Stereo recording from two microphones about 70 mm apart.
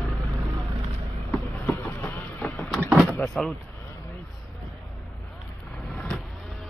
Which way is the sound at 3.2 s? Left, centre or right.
Centre.